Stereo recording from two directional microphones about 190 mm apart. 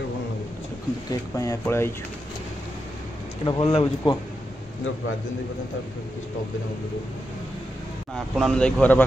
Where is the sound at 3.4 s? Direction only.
30° left (ahead or behind).